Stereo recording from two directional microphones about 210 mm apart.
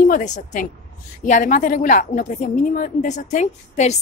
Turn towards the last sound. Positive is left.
turn(degrees=35)  # may be behind; listen again after turning